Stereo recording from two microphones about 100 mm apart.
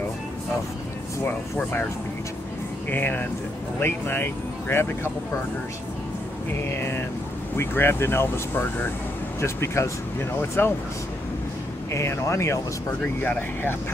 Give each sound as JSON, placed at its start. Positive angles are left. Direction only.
{"t": 1.2, "sound": "speech", "side_deg": 20}
{"t": 2.9, "sound": "speech", "side_deg": 20}
{"t": 6.6, "sound": "speech", "side_deg": 25}
{"t": 11.9, "sound": "speech", "side_deg": 30}
{"t": 13.0, "sound": "speech", "side_deg": 15}